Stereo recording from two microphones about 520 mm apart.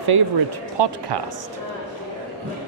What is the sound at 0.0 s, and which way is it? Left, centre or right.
Speech, right.